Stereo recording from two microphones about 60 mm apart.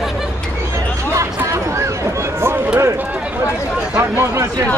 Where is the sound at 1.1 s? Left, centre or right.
Right.